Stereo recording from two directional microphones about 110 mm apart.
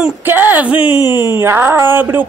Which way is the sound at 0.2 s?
15° right (ahead or behind).